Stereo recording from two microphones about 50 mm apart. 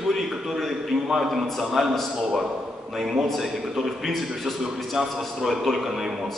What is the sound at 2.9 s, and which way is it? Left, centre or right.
A man's voice, centre.